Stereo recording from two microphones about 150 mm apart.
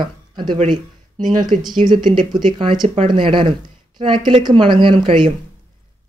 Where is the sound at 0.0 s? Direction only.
30° right (ahead or behind).